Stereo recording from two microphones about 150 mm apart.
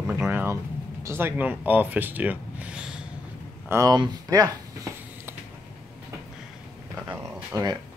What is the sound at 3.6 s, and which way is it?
Speech, 20° right (ahead or behind).